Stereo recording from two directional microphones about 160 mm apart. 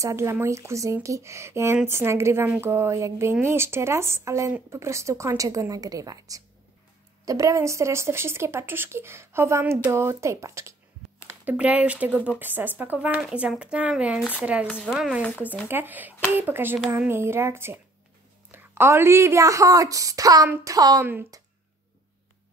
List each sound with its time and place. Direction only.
0.0 s a woman's voice: 15° right (ahead or behind)